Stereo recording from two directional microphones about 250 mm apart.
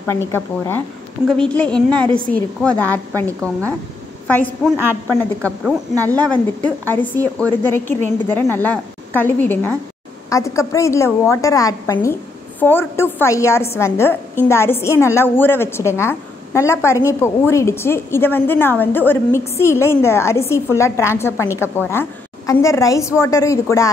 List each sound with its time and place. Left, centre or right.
0.0 s a woman's voice: centre
5.0 s a woman's voice: centre
22.5 s a woman's voice: centre